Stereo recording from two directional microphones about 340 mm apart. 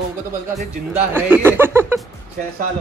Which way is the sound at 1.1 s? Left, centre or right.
Centre.